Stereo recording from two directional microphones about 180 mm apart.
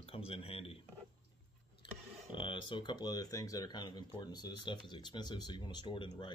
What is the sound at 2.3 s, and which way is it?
Speech, 30° left (ahead or behind).